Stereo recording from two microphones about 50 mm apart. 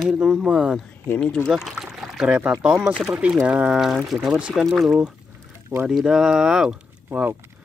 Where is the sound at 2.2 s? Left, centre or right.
Right.